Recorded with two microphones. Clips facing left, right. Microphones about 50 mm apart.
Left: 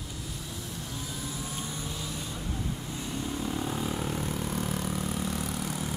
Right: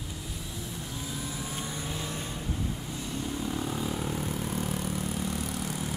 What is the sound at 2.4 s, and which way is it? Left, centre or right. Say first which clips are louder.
Vehicle: right 1 dB; centre.